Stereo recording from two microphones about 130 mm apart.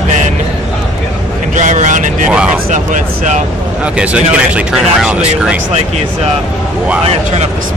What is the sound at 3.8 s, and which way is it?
Speech, 10° right (ahead or behind).